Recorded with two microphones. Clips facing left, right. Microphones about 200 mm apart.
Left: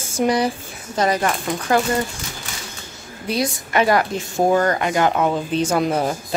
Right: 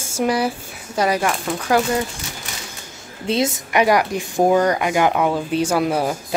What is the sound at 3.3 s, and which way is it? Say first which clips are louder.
Speech: right 2 dB; 25° right (ahead or behind).